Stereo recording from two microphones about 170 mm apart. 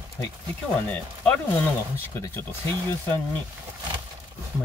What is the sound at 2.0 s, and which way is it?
Speech, 15° left (ahead or behind).